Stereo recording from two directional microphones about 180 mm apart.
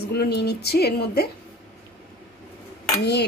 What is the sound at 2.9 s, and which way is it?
Speech, 70° left (ahead or behind).